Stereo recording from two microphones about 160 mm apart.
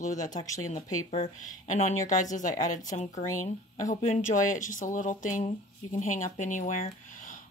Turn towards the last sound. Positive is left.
turn(degrees=55)  # may be behind; listen again after turning